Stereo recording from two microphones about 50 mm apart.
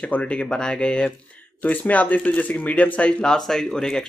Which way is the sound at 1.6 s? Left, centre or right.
Left.